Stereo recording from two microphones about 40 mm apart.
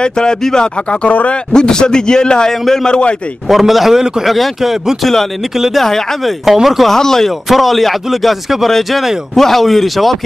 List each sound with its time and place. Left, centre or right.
0.0 s a man's voice: left
1.0 s speech: left
1.5 s a man's voice: centre
3.4 s speech: centre
5.8 s speech: centre
6.4 s speech: centre
6.9 s speech: centre
7.4 s speech: centre